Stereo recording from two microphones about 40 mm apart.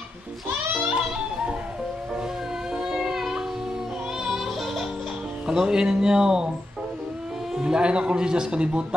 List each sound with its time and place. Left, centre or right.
0.9 s music: right
2.7 s music: centre
5.5 s speech: centre
7.5 s a man's voice: centre
7.8 s speech: right